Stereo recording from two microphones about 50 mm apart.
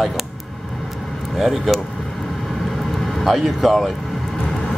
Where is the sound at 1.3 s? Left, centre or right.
Centre.